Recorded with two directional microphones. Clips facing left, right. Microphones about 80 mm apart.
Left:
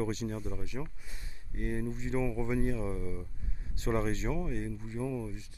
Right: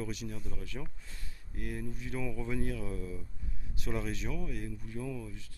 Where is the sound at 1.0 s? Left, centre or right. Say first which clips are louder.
Left 1 dB; centre.